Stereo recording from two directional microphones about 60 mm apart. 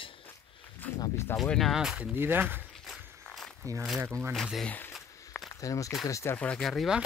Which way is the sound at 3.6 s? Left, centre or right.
Right.